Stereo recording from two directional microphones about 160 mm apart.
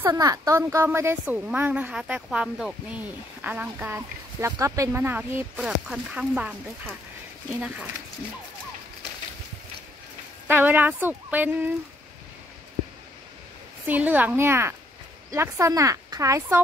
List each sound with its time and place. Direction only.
0.0 s a child's voice: 20° right (ahead or behind); by 7.0 s 5° right (ahead or behind)
10.5 s a child's voice: 10° right (ahead or behind)
13.8 s a child's voice: 10° right (ahead or behind)